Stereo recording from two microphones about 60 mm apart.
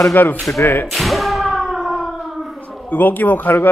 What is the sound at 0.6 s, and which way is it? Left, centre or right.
Speech, left.